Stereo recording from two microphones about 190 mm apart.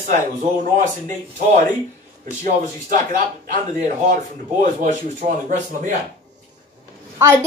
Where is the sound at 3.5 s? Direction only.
45° right (ahead or behind).